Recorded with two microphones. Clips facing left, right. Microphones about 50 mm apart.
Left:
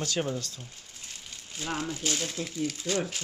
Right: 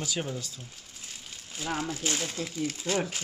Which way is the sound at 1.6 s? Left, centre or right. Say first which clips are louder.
Right 1 dB; centre.